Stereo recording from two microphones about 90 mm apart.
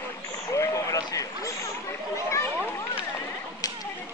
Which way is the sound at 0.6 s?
35° left (ahead or behind).